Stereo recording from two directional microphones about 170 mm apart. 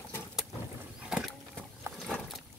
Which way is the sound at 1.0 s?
5° right (ahead or behind).